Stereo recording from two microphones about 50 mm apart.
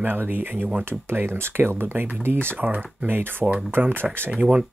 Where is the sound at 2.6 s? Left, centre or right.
Right.